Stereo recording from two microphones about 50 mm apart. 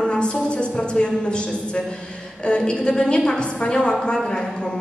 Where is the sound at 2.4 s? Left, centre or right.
Centre.